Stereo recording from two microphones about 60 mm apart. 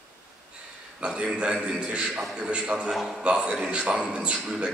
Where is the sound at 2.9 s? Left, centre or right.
Centre.